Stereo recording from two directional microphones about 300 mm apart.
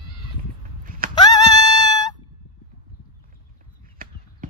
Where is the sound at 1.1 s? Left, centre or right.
Centre.